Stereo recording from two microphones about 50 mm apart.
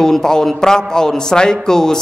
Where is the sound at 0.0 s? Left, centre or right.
Centre.